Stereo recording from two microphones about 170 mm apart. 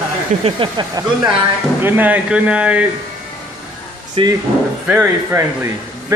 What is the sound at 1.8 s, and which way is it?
Speech, 10° right (ahead or behind).